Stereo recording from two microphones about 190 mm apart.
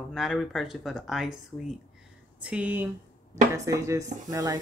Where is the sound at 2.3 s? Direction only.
5° right (ahead or behind).